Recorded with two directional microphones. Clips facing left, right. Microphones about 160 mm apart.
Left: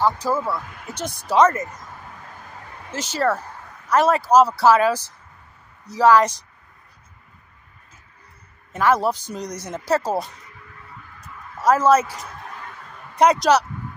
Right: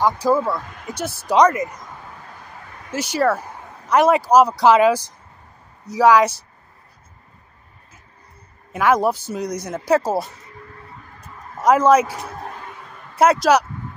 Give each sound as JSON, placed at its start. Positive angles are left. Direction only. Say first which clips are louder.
{"t": 0.0, "sound": "speech", "louder": "right 3 dB", "side_deg": -15}
{"t": 2.9, "sound": "speech", "louder": "right 3 dB", "side_deg": -10}
{"t": 8.7, "sound": "speech", "louder": "right 2 dB", "side_deg": -15}
{"t": 10.8, "sound": "a sound", "louder": "right 2 dB", "side_deg": -30}
{"t": 11.6, "sound": "speech", "louder": "right 2 dB", "side_deg": -15}